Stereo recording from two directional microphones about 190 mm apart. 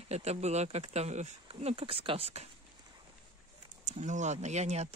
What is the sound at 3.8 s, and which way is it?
Speech, 40° right (ahead or behind).